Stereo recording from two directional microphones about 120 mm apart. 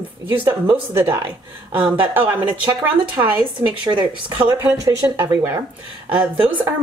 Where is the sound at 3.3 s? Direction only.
40° right (ahead or behind).